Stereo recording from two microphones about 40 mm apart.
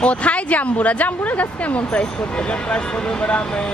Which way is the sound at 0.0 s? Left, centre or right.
Left.